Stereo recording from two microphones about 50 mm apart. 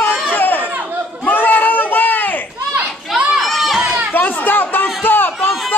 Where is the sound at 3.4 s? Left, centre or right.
Centre.